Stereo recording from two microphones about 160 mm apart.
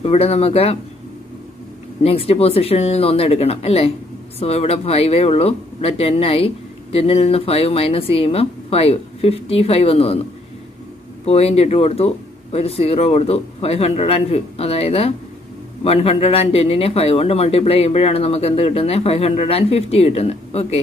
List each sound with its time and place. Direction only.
0.0 s speech: 40° left (ahead or behind)
2.0 s speech: 40° left (ahead or behind)
11.2 s speech: 40° left (ahead or behind)